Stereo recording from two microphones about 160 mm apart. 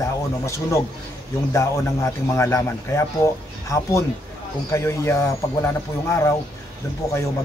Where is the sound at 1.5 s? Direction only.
15° left (ahead or behind).